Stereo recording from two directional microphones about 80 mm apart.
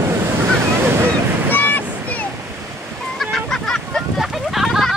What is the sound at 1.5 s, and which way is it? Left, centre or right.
Waves, left.